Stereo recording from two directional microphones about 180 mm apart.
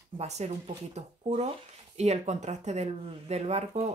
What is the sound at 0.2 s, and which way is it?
Speech, 40° right (ahead or behind).